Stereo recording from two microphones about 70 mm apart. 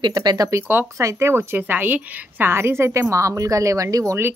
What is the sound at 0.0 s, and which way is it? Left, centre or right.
Speech, right.